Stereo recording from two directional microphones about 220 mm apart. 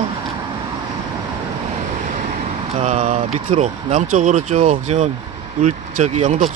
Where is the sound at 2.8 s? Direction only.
30° right (ahead or behind).